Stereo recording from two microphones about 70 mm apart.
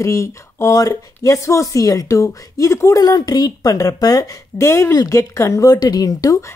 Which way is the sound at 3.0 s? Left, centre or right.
Left.